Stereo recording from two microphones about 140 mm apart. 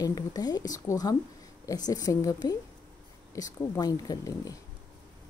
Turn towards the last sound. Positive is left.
turn(degrees=25)  # may be behind; listen again after turning